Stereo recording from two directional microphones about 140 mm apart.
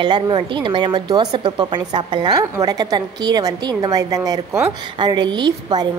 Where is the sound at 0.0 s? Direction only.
35° right (ahead or behind).